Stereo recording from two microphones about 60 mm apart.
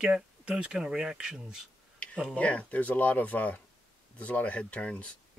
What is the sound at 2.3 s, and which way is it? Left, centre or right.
Speech, left.